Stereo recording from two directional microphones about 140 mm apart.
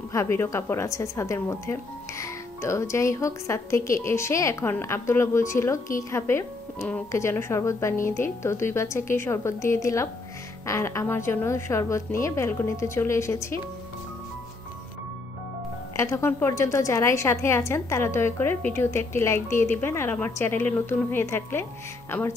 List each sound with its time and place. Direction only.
0.1 s a woman's voice: 20° left (ahead or behind)
16.0 s a woman's voice: 20° left (ahead or behind)